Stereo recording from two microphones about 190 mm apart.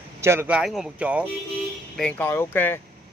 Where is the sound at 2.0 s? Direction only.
10° left (ahead or behind).